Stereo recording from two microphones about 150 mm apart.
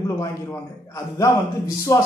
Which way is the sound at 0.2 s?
20° left (ahead or behind).